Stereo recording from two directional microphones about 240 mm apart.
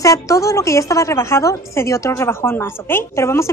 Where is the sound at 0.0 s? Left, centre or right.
Centre.